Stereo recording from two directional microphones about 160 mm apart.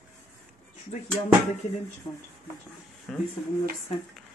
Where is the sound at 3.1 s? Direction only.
5° left (ahead or behind).